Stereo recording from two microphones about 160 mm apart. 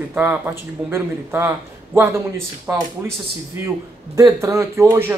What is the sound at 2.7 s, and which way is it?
Speech, 15° right (ahead or behind).